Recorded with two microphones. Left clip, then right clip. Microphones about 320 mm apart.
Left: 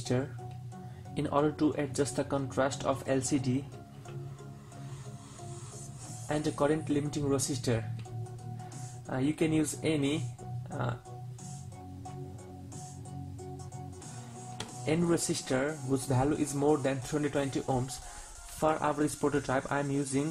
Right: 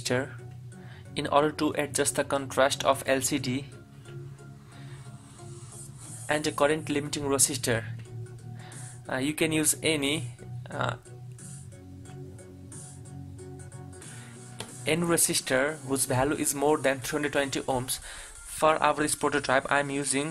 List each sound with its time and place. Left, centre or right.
0.0 s speech: right
6.2 s speech: right
9.0 s speech: right
10.7 s music: right
14.6 s speech: right